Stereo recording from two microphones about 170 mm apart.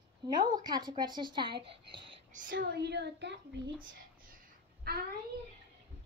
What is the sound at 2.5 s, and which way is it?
Speech, 80° right.